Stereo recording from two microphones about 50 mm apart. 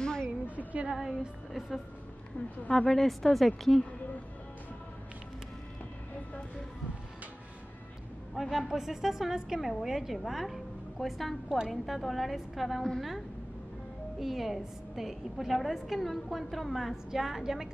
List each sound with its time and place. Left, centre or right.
0.0 s a sound: centre
0.6 s a woman's voice: right
0.9 s speech: centre
2.9 s a woman's voice: centre
8.4 s a woman's voice: centre
11.4 s speech: centre
11.7 s a woman's voice: centre
14.2 s a woman's voice: centre